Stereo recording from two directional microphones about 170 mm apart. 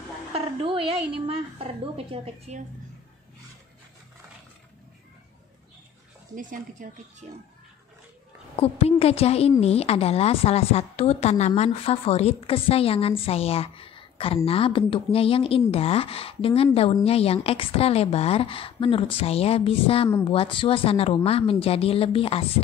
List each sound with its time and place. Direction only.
0.3 s a woman's voice: 35° right (ahead or behind)
6.3 s speech: 50° right (ahead or behind)
8.5 s a woman's voice: 35° left (ahead or behind)